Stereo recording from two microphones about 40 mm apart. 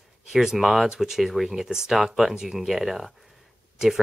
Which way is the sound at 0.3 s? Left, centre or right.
Centre.